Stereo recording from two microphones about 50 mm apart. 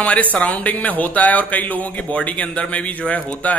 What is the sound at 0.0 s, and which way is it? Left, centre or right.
Speech, left.